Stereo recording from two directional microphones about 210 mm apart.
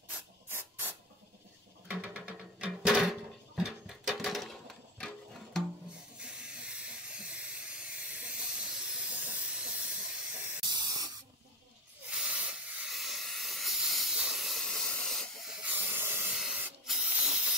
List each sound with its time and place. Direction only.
0.5 s spray: 10° right (ahead or behind)
1.9 s music: 5° right (ahead or behind)
6.1 s hiss: 5° right (ahead or behind)
10.6 s spray: 20° right (ahead or behind)
12.1 s hiss: 5° right (ahead or behind)